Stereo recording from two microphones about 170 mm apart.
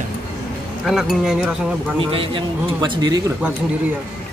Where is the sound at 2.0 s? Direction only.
30° right (ahead or behind).